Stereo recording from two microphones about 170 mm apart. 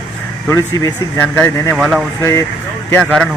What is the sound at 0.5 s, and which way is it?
Speech, 20° left (ahead or behind).